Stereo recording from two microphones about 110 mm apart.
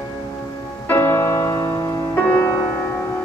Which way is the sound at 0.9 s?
20° left (ahead or behind).